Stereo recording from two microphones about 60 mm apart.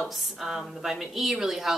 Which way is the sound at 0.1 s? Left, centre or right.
Centre.